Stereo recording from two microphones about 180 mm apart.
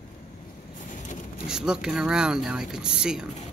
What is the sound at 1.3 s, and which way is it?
Speech, 5° right (ahead or behind).